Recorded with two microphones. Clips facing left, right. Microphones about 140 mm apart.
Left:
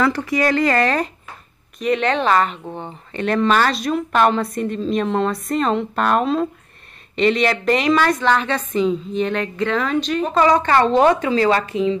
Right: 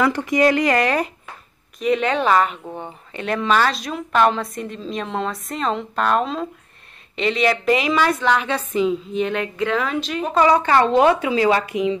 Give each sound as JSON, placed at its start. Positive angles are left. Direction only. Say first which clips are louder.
{"t": 0.0, "sound": "a woman's voice", "louder": "right 1 dB", "side_deg": -20}